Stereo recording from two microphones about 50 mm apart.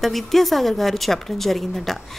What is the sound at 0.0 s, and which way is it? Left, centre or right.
A woman's voice, centre.